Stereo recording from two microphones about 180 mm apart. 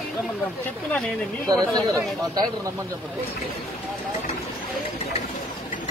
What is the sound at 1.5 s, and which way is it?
Speech, 20° right (ahead or behind).